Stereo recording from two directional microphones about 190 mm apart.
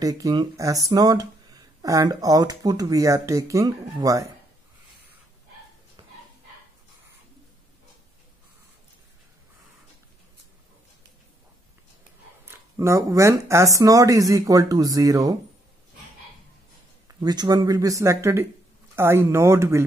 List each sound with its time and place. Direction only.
0.0 s speech: 20° right (ahead or behind)
12.4 s speech: 15° right (ahead or behind)
17.2 s speech: 20° right (ahead or behind)